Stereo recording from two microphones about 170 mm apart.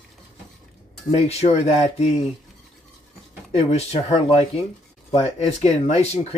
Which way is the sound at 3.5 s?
40° left (ahead or behind).